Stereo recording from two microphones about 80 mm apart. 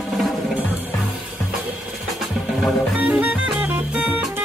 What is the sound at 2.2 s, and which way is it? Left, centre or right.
Music, centre.